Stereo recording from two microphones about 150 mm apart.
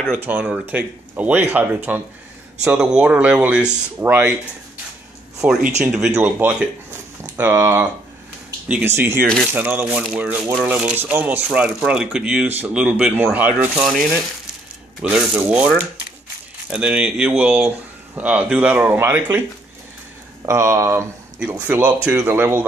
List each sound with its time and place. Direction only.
0.2 s speech: 10° right (ahead or behind)
5.4 s speech: 10° right (ahead or behind)
15.0 s speech: 5° right (ahead or behind)
16.7 s speech: 5° right (ahead or behind)
20.4 s speech: 20° right (ahead or behind)